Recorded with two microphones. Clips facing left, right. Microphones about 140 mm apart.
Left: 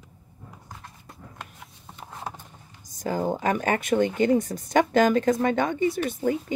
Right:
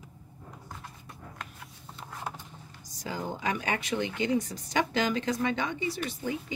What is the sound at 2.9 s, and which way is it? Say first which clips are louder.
Speech: left 9 dB; 50° left (ahead or behind).